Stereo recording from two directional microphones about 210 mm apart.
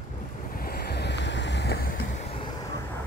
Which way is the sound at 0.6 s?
45° left (ahead or behind).